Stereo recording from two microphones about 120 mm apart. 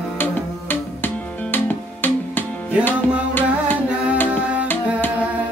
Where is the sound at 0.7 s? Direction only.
15° left (ahead or behind).